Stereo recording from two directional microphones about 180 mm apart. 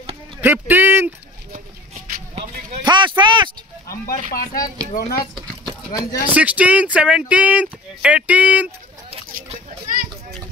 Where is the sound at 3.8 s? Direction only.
55° left (ahead or behind).